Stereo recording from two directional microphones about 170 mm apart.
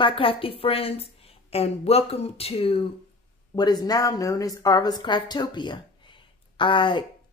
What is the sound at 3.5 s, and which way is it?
Speech, 25° left (ahead or behind).